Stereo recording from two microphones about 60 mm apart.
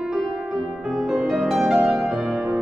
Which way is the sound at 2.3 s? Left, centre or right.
Centre.